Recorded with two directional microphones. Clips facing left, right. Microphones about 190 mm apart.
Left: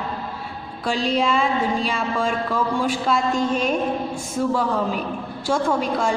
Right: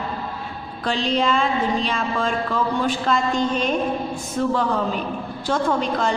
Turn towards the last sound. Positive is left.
turn(degrees=5)  # may be behind; listen again after turning